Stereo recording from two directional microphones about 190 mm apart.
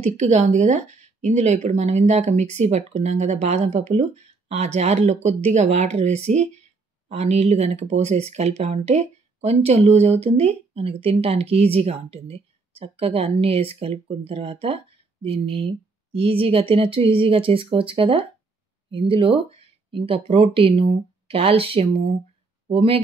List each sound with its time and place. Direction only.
0.0 s speech: 35° right (ahead or behind)